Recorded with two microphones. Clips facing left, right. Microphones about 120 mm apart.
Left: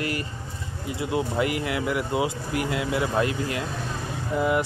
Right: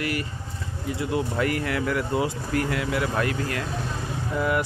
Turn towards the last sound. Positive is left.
turn(degrees=20)  # may be behind; listen again after turning